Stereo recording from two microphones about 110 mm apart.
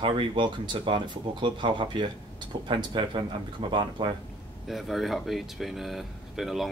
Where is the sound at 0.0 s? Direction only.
50° right (ahead or behind).